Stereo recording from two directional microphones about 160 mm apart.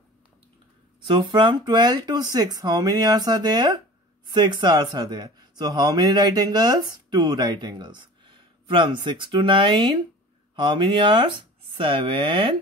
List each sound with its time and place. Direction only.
1.0 s a man's voice: 30° right (ahead or behind)